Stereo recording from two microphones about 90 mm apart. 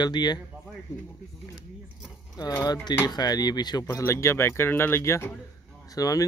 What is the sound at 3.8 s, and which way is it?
Speech, 35° left (ahead or behind).